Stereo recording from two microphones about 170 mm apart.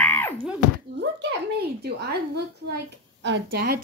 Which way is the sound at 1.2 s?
80° right.